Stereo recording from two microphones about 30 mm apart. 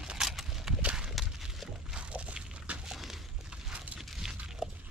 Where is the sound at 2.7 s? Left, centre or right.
Right.